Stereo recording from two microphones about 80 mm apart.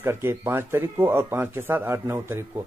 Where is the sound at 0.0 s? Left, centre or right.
Right.